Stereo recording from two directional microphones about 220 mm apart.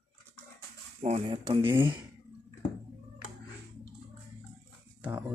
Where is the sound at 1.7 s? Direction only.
10° right (ahead or behind).